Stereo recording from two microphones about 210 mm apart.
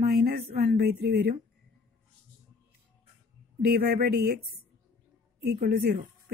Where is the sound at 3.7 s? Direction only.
45° right (ahead or behind).